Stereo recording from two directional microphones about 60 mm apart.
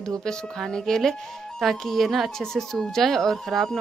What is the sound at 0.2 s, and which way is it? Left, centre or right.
Speech, centre.